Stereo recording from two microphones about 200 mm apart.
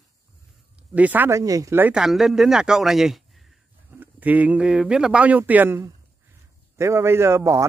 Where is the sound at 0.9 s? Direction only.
10° right (ahead or behind).